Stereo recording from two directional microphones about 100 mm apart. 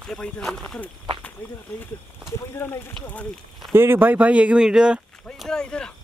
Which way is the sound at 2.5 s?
25° left (ahead or behind).